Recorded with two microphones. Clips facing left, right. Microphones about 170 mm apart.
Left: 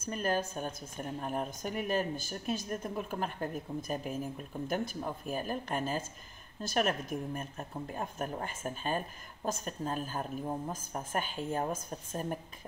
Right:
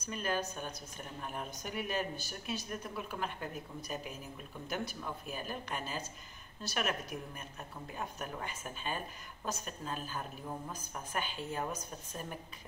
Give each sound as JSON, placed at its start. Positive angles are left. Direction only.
{"t": 0.0, "sound": "a woman's voice", "side_deg": 45}